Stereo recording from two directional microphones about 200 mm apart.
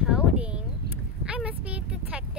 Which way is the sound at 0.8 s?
50° right (ahead or behind).